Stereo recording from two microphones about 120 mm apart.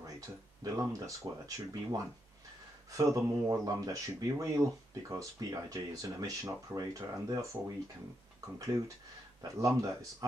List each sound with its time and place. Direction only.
0.7 s speech: 25° right (ahead or behind)
9.4 s speech: 30° right (ahead or behind)